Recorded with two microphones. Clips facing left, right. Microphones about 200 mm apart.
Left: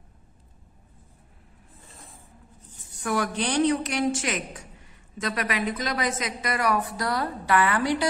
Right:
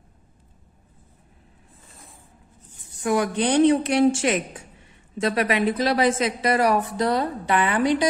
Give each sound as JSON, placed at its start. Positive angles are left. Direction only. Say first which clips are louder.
{"t": 3.0, "sound": "a woman's voice", "louder": "right 5 dB", "side_deg": -20}